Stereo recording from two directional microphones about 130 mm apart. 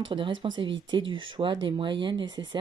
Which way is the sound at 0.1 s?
40° right (ahead or behind).